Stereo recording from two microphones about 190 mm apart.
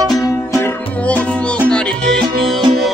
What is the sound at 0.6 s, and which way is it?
Music, 5° left (ahead or behind).